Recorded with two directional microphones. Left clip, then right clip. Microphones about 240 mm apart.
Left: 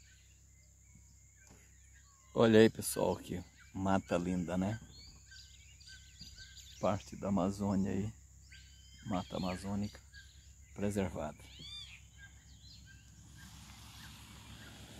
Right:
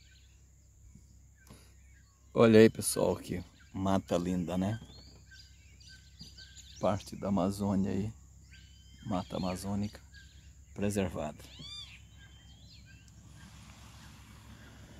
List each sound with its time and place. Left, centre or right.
2.3 s speech: centre
6.8 s speech: centre
11.5 s cat: right
13.4 s a sound: right